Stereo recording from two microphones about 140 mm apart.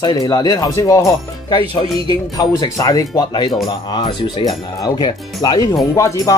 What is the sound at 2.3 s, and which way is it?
Speech, 25° left (ahead or behind).